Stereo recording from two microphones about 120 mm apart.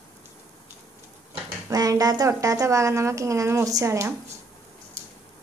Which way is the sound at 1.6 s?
30° right (ahead or behind).